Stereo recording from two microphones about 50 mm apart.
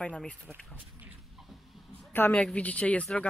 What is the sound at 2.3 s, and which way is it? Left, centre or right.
Speech, left.